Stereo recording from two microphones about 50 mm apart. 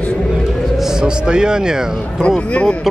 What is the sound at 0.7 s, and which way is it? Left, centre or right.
Speech, centre.